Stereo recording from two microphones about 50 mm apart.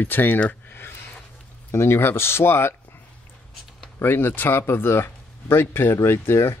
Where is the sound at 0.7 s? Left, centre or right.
Left.